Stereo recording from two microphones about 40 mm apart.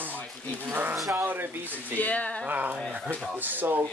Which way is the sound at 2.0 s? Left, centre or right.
Left.